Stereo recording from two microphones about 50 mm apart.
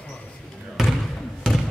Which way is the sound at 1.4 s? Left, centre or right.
Centre.